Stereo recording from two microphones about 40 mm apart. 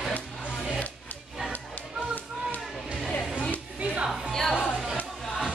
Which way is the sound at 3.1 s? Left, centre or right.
Left.